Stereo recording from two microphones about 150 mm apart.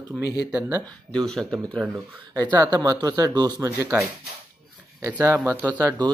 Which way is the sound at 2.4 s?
30° right (ahead or behind).